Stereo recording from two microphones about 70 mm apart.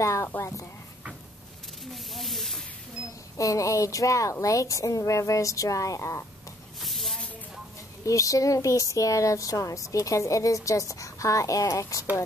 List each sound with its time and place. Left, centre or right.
0.0 s speech: left
2.1 s speech: centre
3.3 s speech: left
6.8 s a sound: centre
8.0 s speech: left